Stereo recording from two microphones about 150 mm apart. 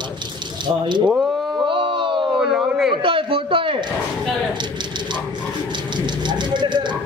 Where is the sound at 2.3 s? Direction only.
5° right (ahead or behind).